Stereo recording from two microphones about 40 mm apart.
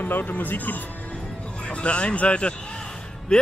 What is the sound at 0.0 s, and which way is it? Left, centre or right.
Speech, left.